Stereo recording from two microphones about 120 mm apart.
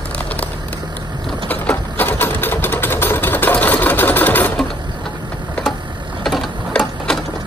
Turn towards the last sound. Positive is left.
turn(degrees=5)  # may be behind; listen again after turning